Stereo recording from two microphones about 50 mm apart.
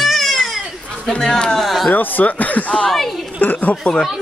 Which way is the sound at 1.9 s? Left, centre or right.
Left.